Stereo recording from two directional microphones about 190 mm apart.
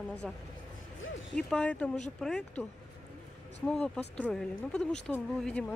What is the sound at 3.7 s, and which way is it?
Speech, 5° left (ahead or behind).